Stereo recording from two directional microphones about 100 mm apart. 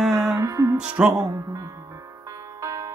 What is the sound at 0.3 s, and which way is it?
Music, 30° right (ahead or behind).